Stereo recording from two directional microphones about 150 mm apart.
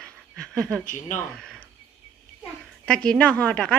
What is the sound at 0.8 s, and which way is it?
Speech, 60° left (ahead or behind).